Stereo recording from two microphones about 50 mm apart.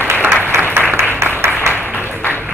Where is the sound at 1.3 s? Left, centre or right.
Right.